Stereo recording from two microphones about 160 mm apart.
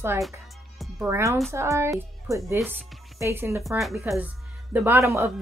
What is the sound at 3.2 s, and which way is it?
A woman's voice, 15° right (ahead or behind).